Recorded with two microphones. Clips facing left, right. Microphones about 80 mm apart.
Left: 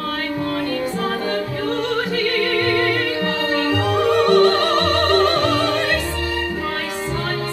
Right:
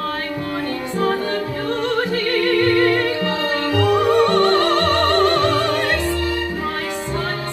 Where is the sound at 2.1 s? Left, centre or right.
Right.